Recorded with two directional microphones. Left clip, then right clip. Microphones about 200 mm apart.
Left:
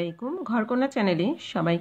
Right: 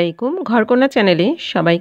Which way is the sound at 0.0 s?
45° right (ahead or behind).